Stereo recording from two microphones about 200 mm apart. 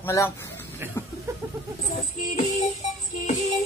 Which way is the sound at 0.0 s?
15° left (ahead or behind).